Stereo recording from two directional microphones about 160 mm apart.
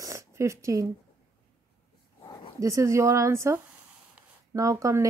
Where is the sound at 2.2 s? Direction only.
25° left (ahead or behind).